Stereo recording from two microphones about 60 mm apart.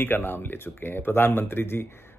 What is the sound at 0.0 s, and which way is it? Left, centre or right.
A man's voice, left.